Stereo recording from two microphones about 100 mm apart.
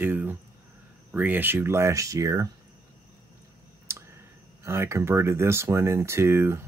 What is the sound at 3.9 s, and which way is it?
Clicking, 30° right (ahead or behind).